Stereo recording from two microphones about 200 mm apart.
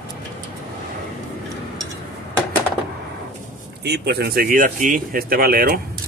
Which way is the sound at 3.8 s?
55° right (ahead or behind).